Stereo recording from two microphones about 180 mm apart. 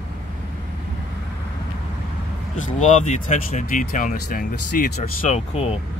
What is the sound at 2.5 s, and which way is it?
Speech, 40° left (ahead or behind).